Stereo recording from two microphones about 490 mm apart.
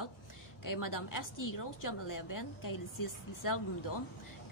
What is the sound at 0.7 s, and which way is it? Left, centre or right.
A woman's voice, left.